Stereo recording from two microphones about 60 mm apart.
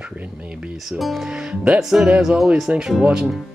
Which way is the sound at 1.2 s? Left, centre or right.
Centre.